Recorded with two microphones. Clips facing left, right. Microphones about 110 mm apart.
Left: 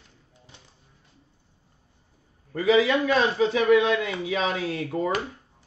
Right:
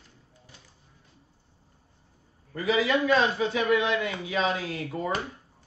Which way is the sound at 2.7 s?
25° left (ahead or behind).